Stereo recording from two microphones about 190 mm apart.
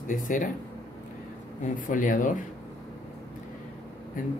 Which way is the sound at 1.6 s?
45° left (ahead or behind).